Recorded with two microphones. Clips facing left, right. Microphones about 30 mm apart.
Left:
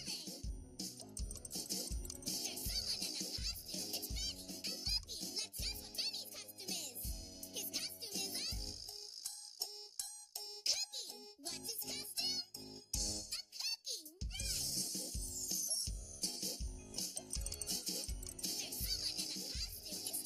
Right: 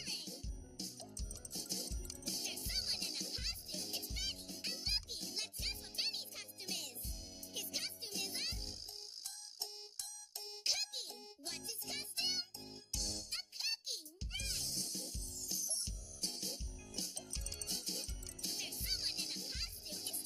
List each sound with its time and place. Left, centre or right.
0.0 s music: centre
0.8 s music: centre
2.4 s music: centre
10.6 s music: centre